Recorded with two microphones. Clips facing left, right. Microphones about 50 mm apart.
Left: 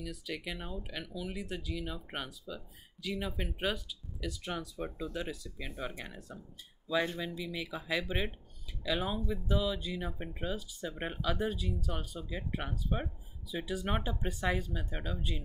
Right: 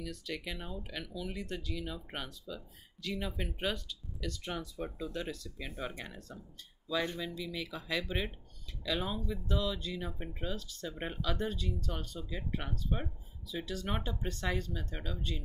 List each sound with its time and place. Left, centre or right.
0.0 s speech: centre